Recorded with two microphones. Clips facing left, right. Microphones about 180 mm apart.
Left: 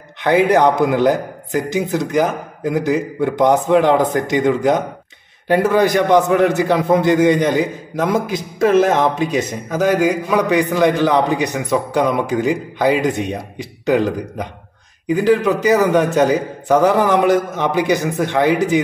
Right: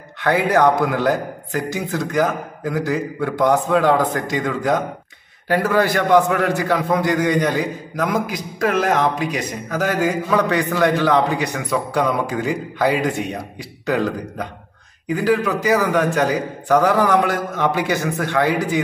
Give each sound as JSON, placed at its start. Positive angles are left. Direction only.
{"t": 0.2, "sound": "a man's voice", "side_deg": 20}